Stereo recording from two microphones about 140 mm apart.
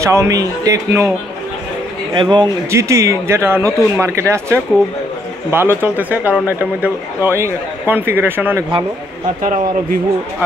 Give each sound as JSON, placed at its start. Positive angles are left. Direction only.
{"t": 0.0, "sound": "speech", "side_deg": -20}
{"t": 2.1, "sound": "speech", "side_deg": -35}
{"t": 2.7, "sound": "speech", "side_deg": -20}